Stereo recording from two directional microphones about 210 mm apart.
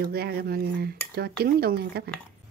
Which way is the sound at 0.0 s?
50° right (ahead or behind).